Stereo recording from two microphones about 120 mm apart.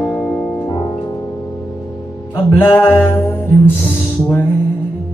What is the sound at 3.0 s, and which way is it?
Music, 15° left (ahead or behind).